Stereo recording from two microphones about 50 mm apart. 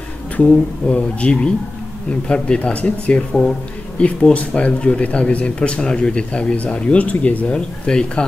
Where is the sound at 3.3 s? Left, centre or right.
Centre.